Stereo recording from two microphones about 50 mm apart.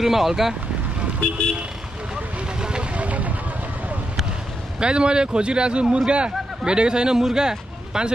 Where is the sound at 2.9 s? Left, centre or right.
Right.